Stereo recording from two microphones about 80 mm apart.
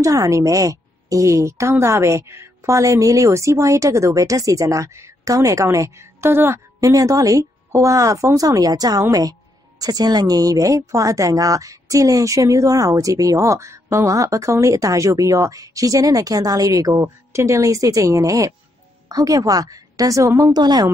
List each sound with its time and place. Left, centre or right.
0.0 s a woman's voice: right
6.8 s speech: right
20.5 s a woman's voice: right